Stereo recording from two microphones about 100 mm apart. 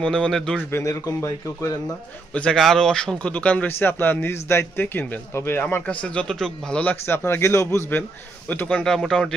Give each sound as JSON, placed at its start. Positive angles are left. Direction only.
{"t": 0.0, "sound": "a man's voice", "side_deg": 10}
{"t": 0.7, "sound": "a man's voice", "side_deg": 30}
{"t": 2.3, "sound": "a man's voice", "side_deg": 5}
{"t": 8.5, "sound": "a man's voice", "side_deg": 15}